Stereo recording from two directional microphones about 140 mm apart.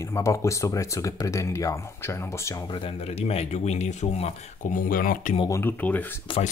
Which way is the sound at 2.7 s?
45° left (ahead or behind).